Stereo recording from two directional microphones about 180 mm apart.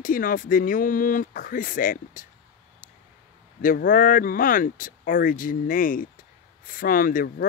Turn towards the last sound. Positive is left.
turn(degrees=50)  # may be behind; listen again after turning